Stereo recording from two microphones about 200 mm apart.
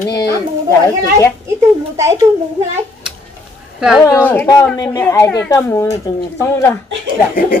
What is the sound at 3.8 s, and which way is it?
Speech, 5° right (ahead or behind).